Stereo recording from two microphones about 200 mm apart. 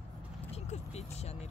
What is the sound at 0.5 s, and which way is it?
Speech, 30° left (ahead or behind).